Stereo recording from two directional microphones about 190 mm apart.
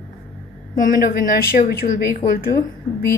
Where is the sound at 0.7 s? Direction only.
50° left (ahead or behind).